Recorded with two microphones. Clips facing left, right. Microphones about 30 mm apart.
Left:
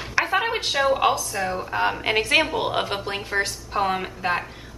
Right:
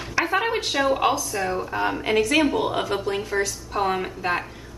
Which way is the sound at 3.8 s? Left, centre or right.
Centre.